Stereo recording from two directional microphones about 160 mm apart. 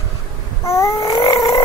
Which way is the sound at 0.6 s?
20° left (ahead or behind).